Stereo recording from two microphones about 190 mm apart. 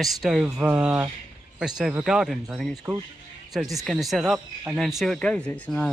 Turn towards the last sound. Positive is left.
turn(degrees=5)  # may be behind; listen again after turning